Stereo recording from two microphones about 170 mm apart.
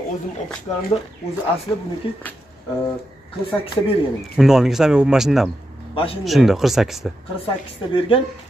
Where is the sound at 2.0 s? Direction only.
30° left (ahead or behind).